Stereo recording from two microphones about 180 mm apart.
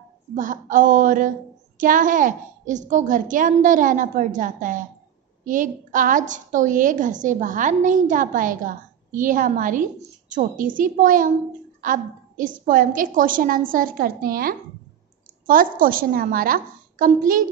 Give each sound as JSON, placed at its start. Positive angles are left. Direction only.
{"t": 0.3, "sound": "a woman's voice", "side_deg": -45}